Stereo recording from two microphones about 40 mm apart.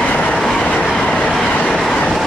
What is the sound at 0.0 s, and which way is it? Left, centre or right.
Train, left.